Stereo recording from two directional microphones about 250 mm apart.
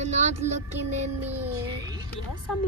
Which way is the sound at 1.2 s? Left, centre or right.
Centre.